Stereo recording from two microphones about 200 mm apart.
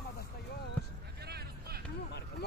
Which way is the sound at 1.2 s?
55° right (ahead or behind).